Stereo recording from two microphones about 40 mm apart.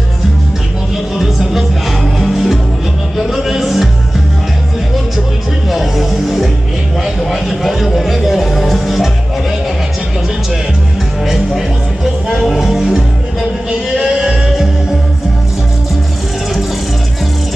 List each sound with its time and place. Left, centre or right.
1.1 s music: centre
5.7 s music: centre
11.2 s music: centre
13.7 s a sound: centre